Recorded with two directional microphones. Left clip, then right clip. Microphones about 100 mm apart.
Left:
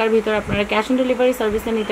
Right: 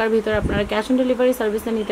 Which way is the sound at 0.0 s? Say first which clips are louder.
Left 2 dB; 50° right (ahead or behind).